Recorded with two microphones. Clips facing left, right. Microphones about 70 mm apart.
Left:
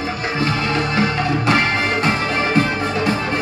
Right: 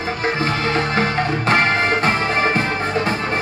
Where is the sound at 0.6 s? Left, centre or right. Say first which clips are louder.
Even; right.